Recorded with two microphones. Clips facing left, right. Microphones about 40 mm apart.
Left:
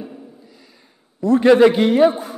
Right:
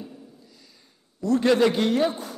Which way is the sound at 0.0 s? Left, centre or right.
Left.